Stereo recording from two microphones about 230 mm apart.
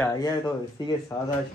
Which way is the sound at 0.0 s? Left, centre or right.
Centre.